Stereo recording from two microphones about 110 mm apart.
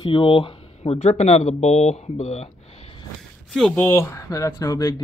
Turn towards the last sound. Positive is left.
turn(degrees=35)  # may be behind; listen again after turning